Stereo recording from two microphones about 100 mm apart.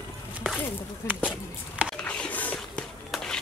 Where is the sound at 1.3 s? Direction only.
10° right (ahead or behind).